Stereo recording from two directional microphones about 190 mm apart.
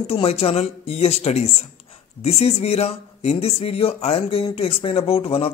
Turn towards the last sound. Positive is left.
turn(degrees=30)  # may be behind; listen again after turning